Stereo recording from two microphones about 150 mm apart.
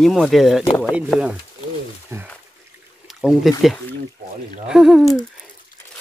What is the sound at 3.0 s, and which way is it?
Speech, centre (ahead or behind).